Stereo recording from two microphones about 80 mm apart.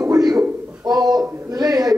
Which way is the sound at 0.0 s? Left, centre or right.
Right.